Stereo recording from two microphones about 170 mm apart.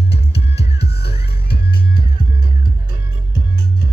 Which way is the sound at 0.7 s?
75° left (ahead or behind).